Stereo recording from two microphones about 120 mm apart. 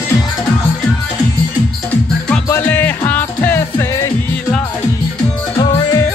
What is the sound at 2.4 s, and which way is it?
Music, 15° left (ahead or behind).